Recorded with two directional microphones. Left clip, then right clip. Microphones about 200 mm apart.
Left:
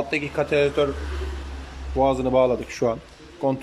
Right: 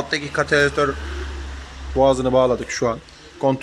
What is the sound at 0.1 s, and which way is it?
Speech, 5° left (ahead or behind).